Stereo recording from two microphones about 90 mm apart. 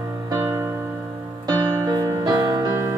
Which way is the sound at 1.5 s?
45° right (ahead or behind).